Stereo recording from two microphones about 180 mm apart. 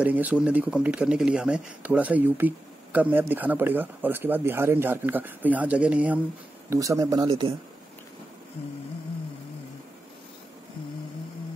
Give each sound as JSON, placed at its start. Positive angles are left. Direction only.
{"t": 0.0, "sound": "speech", "side_deg": -10}
{"t": 6.7, "sound": "speech", "side_deg": -20}
{"t": 7.2, "sound": "a man's voice", "side_deg": -30}